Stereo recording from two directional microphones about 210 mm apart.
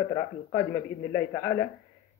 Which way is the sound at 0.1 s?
20° left (ahead or behind).